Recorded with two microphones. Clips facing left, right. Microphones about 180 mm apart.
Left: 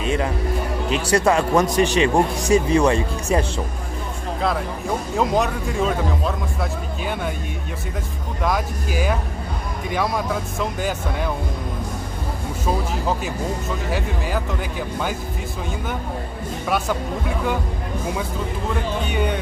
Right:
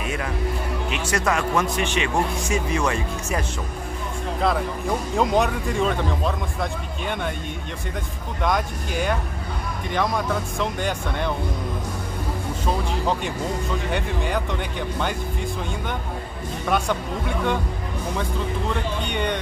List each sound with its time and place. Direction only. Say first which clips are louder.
0.0 s music: left 6 dB; 25° left (ahead or behind)
0.8 s speech: left 7 dB; 35° left (ahead or behind)
4.4 s speech: right 1 dB; centre (ahead or behind)
8.4 s speech: left 1 dB; 5° left (ahead or behind)
12.6 s speech: left 1 dB; 5° left (ahead or behind)
16.6 s speech: even; 5° left (ahead or behind)
19.0 s speech: left 2 dB; 5° left (ahead or behind)